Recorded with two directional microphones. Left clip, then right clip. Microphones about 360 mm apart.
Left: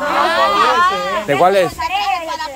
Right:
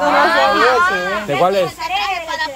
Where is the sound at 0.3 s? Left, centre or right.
Left.